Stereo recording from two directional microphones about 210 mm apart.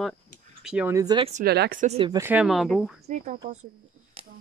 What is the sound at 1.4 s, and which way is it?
Speech, 50° right (ahead or behind).